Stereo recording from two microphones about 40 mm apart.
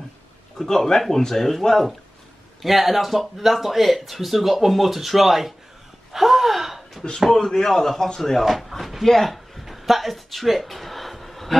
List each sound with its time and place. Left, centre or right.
0.6 s speech: centre
6.1 s gasp: centre
7.3 s speech: centre
9.1 s a sound: centre